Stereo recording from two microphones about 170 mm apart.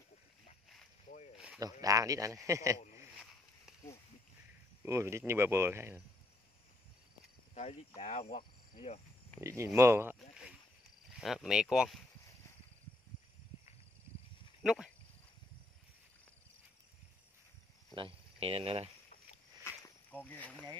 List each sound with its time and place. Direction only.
1.6 s speech: 20° right (ahead or behind)
4.8 s speech: 15° right (ahead or behind)
7.5 s speech: 40° left (ahead or behind)
9.4 s speech: 20° right (ahead or behind)
10.1 s rowboat: 5° right (ahead or behind)
11.1 s speech: 5° right (ahead or behind)
14.6 s speech: 5° right (ahead or behind)
17.9 s speech: 35° right (ahead or behind)
19.6 s a sound: 10° left (ahead or behind)